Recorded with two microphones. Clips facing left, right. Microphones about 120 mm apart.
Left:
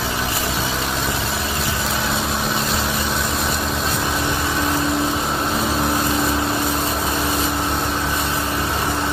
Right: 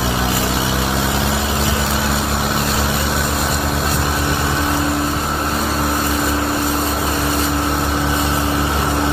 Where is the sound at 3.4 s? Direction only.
5° right (ahead or behind).